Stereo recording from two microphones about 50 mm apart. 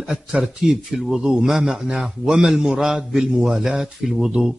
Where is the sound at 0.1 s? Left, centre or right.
Centre.